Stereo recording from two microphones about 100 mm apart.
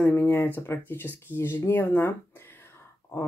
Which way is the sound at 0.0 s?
20° left (ahead or behind).